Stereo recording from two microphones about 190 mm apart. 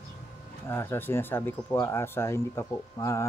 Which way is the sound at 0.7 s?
10° left (ahead or behind).